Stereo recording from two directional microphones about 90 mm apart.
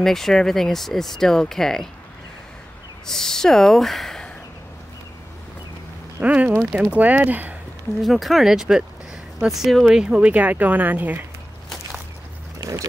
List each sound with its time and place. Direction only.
0.0 s speech: 5° left (ahead or behind)
3.1 s speech: 5° left (ahead or behind)
6.2 s speech: 15° right (ahead or behind)
8.0 s speech: centre (ahead or behind); by 11.2 s 20° right (ahead or behind)
12.5 s boat: 35° right (ahead or behind)